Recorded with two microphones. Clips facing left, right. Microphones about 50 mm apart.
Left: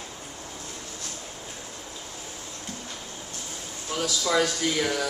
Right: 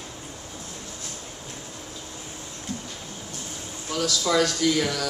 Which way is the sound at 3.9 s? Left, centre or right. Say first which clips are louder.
Right 2 dB; left.